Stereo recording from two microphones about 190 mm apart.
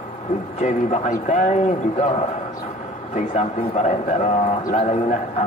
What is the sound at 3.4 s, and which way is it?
A man's voice, 40° left (ahead or behind).